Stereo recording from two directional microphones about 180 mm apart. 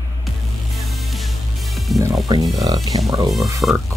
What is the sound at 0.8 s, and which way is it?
Music, centre (ahead or behind).